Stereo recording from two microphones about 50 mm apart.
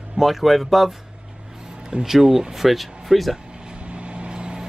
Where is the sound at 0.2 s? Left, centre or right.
Centre.